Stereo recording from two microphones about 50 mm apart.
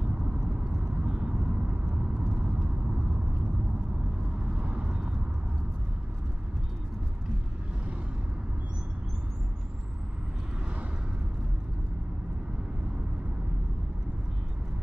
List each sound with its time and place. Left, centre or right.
0.0 s vehicle: centre
4.5 s vehicle: right